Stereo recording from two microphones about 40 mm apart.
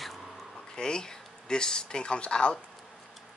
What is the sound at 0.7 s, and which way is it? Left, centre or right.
Speech, centre.